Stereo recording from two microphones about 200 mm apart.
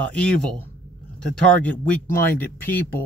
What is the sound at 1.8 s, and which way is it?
Speech, 10° left (ahead or behind).